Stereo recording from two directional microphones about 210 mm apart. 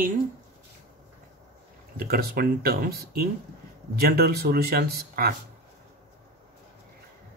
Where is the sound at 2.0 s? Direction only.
45° right (ahead or behind).